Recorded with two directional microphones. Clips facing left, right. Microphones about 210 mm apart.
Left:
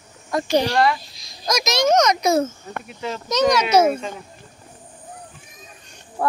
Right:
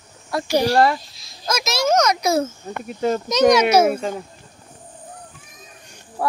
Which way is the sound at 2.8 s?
45° right (ahead or behind).